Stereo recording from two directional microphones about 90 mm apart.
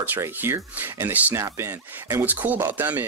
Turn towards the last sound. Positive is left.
turn(degrees=-20)  # may be behind; listen again after turning